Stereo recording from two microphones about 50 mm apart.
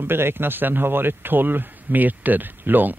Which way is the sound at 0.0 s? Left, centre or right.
Right.